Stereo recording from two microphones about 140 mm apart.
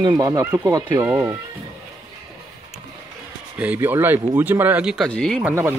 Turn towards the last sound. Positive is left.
turn(degrees=-15)  # may be behind; listen again after turning